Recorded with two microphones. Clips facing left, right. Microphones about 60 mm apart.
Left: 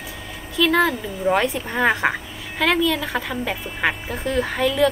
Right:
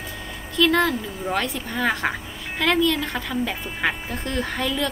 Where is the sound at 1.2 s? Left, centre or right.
Centre.